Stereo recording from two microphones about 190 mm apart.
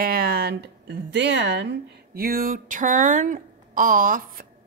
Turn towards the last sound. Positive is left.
turn(degrees=-45)  # may be behind; listen again after turning